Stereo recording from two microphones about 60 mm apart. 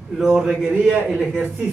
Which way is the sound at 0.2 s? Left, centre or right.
Centre.